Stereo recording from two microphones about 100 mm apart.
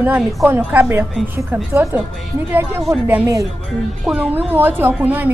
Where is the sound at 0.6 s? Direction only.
15° right (ahead or behind).